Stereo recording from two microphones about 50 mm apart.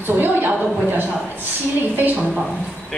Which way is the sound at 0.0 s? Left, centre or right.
Right.